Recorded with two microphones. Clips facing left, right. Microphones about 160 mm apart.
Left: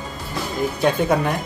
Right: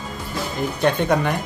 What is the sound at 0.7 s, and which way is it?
Speech, 5° left (ahead or behind).